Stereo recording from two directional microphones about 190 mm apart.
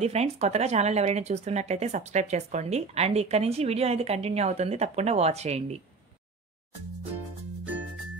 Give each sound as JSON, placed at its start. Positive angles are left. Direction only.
{"t": 0.0, "sound": "speech", "side_deg": -35}